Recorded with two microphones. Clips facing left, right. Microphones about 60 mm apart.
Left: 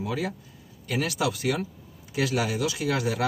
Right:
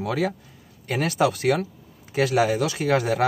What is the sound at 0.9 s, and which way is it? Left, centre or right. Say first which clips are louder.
Speech: right 5 dB; right.